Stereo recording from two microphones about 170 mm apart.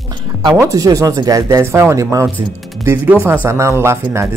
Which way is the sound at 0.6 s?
20° right (ahead or behind).